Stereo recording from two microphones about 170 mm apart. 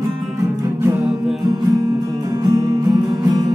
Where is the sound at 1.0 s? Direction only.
Centre (ahead or behind).